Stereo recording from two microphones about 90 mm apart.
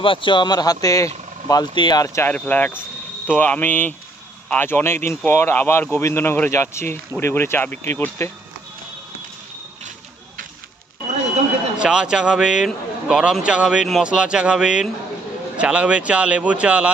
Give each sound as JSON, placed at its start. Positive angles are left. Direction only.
{"t": 0.0, "sound": "speech", "side_deg": 70}
{"t": 1.8, "sound": "speech", "side_deg": 55}
{"t": 2.2, "sound": "speech", "side_deg": 20}
{"t": 11.8, "sound": "speech", "side_deg": -10}